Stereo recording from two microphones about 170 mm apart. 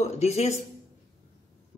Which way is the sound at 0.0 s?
40° left (ahead or behind).